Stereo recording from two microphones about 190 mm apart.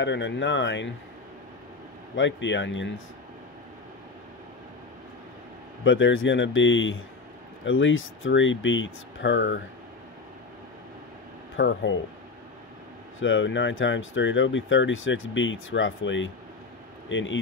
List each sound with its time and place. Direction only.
0.0 s speech: 70° left (ahead or behind)
2.1 s speech: 75° left (ahead or behind)
5.9 s speech: 80° left
7.6 s speech: 90° left
11.5 s speech: 75° left (ahead or behind)
13.2 s speech: 85° left